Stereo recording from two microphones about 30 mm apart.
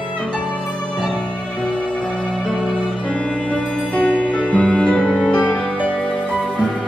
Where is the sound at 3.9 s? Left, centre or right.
Left.